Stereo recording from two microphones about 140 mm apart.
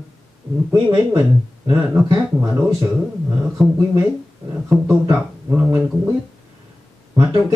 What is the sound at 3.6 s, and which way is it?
Speech, centre (ahead or behind).